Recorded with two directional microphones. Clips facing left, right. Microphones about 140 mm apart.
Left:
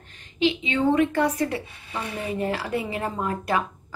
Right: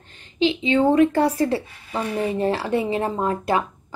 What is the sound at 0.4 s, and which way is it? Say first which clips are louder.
A woman's voice: right 4 dB; 30° right (ahead or behind).